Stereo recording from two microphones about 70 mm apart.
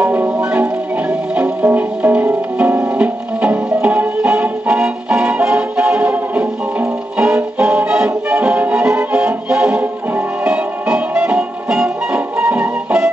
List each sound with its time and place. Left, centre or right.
0.0 s music: right
0.4 s music: centre